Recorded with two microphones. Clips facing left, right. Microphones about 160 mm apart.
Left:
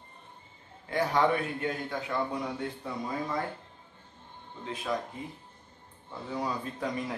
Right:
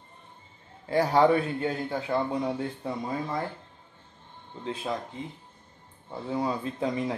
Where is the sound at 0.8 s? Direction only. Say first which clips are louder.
Right 5 dB; 30° right (ahead or behind).